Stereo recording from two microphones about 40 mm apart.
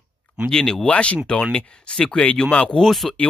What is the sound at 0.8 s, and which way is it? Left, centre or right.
Speech, left.